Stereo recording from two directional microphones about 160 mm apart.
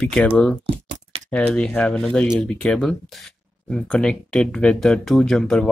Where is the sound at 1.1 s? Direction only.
35° right (ahead or behind).